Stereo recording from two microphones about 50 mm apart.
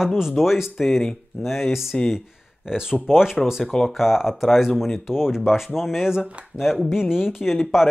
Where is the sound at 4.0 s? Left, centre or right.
Centre.